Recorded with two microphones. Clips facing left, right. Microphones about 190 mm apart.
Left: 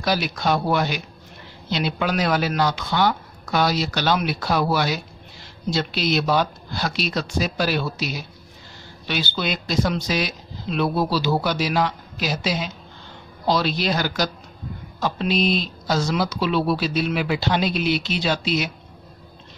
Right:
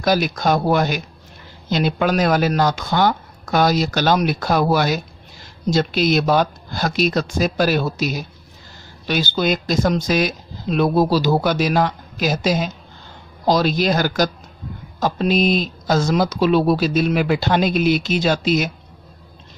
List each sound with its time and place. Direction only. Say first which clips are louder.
0.0 s speech: right 5 dB; 45° right (ahead or behind)